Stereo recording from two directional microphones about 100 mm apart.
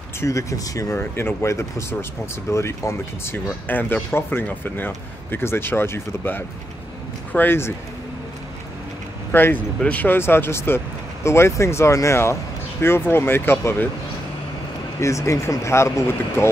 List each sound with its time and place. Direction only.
0.2 s speech: 35° left (ahead or behind)
9.3 s speech: 20° left (ahead or behind)
15.0 s speech: 30° left (ahead or behind)